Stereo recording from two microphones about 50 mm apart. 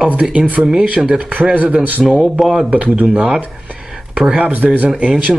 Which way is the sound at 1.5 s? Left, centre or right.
Right.